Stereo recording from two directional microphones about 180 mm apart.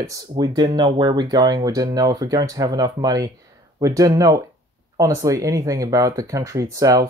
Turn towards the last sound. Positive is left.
turn(degrees=-20)  # may be behind; listen again after turning